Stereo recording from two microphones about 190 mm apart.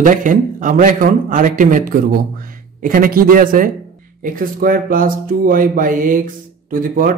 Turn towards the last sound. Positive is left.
turn(degrees=-45)  # may be behind; listen again after turning